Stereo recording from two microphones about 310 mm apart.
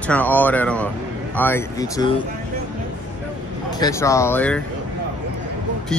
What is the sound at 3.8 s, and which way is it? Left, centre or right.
Speech, centre.